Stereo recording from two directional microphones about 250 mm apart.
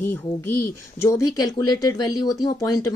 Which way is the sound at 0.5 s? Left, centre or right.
Left.